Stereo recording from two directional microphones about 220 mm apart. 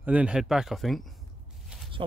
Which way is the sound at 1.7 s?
5° right (ahead or behind).